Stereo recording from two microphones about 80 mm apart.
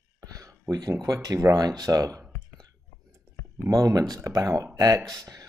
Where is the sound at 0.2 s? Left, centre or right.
Right.